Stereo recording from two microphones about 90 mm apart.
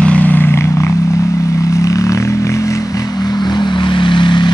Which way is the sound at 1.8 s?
40° left (ahead or behind).